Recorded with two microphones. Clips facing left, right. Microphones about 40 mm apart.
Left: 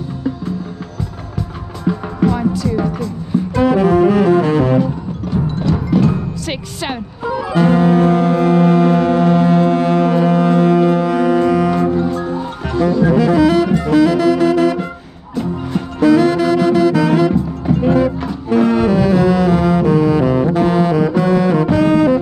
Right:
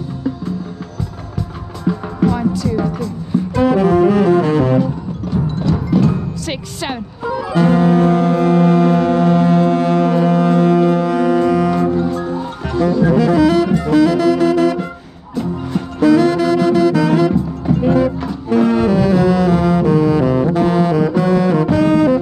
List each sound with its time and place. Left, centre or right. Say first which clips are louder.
1.9 s music: even; left
2.7 s speech: even; left
3.5 s saxophone: even; left
4.8 s music: even; left
6.4 s speech: even; centre
7.2 s music: left 1 dB; left
7.5 s music: even; left
13.0 s saxophone: even; left
16.0 s music: even; left